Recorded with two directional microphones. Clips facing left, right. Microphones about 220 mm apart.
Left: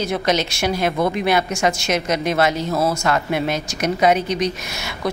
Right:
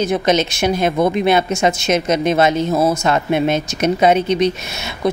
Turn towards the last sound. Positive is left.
turn(degrees=-25)  # may be behind; listen again after turning